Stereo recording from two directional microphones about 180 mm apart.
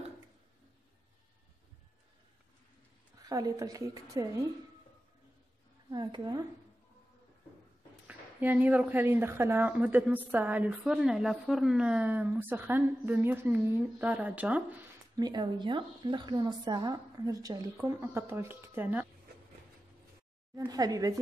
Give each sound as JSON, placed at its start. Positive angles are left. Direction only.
{"t": 3.3, "sound": "a woman's voice", "side_deg": -20}
{"t": 5.9, "sound": "a woman's voice", "side_deg": -25}
{"t": 8.1, "sound": "speech", "side_deg": -10}
{"t": 15.1, "sound": "a woman's voice", "side_deg": -25}
{"t": 20.5, "sound": "a sound", "side_deg": -20}